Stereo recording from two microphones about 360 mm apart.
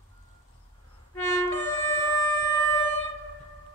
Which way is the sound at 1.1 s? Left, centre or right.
Centre.